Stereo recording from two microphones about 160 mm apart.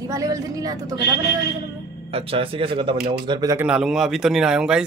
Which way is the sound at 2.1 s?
35° right (ahead or behind).